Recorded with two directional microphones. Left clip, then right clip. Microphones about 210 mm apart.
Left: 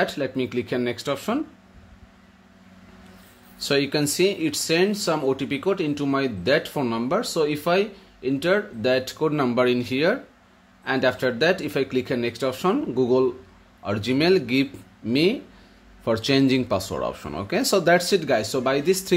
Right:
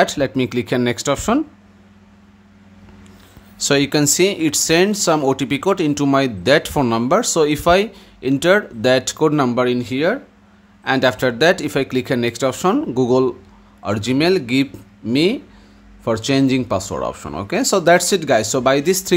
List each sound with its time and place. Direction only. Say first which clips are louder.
0.0 s speech: right 8 dB; 20° right (ahead or behind)
3.5 s speech: right 6 dB; 20° right (ahead or behind)